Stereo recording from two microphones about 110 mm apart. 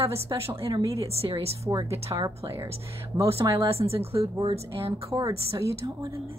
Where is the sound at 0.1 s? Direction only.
25° right (ahead or behind).